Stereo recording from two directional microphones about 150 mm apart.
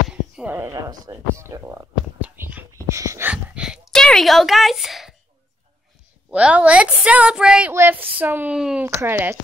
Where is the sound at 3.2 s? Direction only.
10° right (ahead or behind).